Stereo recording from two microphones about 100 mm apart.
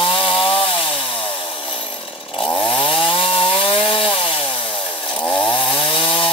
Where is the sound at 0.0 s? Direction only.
60° left (ahead or behind).